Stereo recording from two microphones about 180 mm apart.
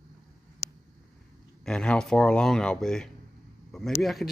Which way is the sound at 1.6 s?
5° left (ahead or behind).